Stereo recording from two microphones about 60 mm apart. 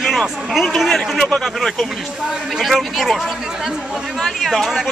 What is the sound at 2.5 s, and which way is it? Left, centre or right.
Speech, centre.